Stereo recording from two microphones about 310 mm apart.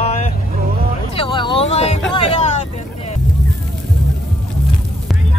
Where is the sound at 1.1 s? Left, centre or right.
Centre.